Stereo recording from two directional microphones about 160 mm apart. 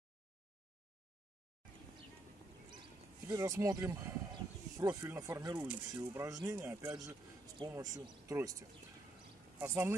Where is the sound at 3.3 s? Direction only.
20° right (ahead or behind).